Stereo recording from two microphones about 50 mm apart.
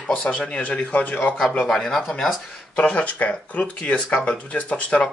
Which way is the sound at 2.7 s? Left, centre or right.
Left.